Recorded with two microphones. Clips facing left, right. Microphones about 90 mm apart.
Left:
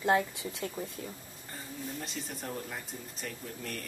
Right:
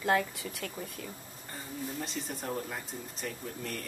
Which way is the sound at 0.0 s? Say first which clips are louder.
Left 1 dB; 20° left (ahead or behind).